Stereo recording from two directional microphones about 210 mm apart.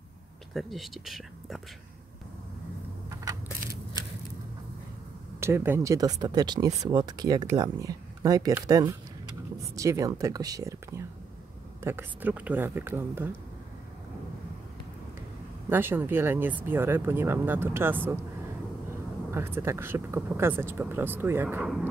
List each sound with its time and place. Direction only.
0.6 s speech: centre (ahead or behind)
5.4 s speech: 10° right (ahead or behind)
15.7 s speech: 10° right (ahead or behind)